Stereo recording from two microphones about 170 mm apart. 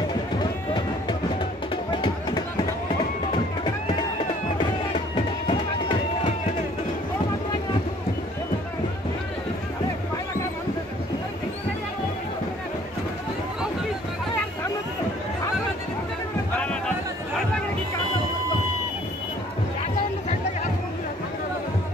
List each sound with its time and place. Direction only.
1.9 s music: 25° left (ahead or behind)
5.1 s music: 30° left (ahead or behind)